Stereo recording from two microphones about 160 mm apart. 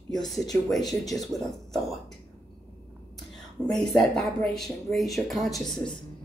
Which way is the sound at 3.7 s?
Centre (ahead or behind).